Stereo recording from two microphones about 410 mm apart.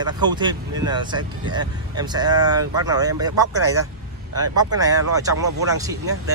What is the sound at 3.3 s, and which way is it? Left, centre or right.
Speech, right.